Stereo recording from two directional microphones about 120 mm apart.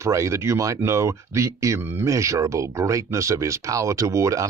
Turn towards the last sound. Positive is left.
turn(degrees=-25)  # may be behind; listen again after turning